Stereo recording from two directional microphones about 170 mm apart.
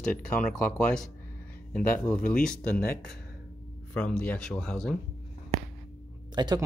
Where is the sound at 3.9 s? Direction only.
5° left (ahead or behind).